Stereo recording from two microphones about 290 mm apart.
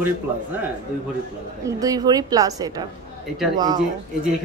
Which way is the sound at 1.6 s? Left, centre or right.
Centre.